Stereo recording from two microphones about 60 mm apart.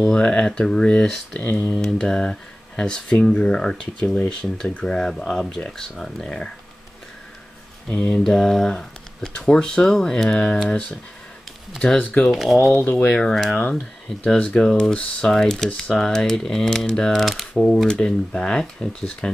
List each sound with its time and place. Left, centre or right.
0.0 s speech: centre
1.4 s speech: left
1.8 s speech: centre
8.1 s speech: centre
12.0 s speech: left
12.3 s speech: centre
12.7 s speech: left
13.2 s speech: centre
13.6 s speech: left; by 17.5 s centre
17.8 s speech: centre